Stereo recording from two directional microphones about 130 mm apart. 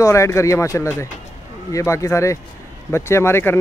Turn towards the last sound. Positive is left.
turn(degrees=20)  # may be behind; listen again after turning